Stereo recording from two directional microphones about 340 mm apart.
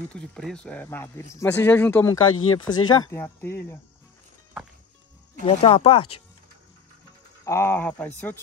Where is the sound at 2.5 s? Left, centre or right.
Centre.